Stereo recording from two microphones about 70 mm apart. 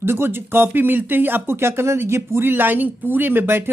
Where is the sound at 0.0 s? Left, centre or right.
Right.